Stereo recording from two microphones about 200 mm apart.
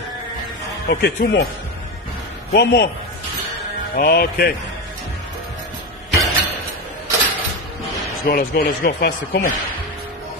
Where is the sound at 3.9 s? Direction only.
50° left (ahead or behind).